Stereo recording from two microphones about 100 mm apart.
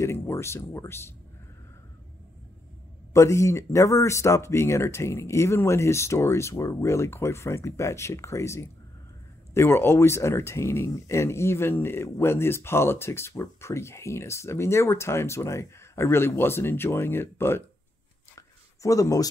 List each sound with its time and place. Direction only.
0.0 s speech: 25° left (ahead or behind)
3.1 s speech: 30° left (ahead or behind)
18.3 s a sound: 35° left (ahead or behind)